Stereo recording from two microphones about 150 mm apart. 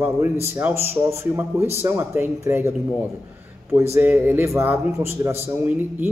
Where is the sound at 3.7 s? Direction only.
15° right (ahead or behind).